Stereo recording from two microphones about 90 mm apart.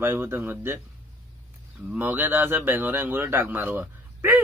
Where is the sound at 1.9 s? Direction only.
20° right (ahead or behind).